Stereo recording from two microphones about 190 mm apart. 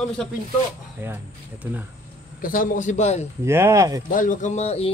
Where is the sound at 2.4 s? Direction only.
45° left (ahead or behind).